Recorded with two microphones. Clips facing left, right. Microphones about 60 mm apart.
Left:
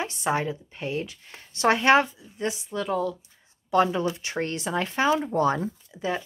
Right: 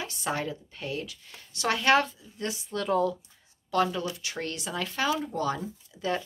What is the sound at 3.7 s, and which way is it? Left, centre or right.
Speech, left.